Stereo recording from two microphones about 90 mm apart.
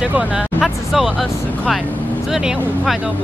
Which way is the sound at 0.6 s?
Centre (ahead or behind).